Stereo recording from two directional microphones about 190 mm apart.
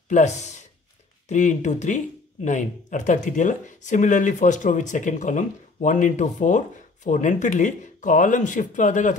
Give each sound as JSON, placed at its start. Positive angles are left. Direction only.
{"t": 0.1, "sound": "speech", "side_deg": 40}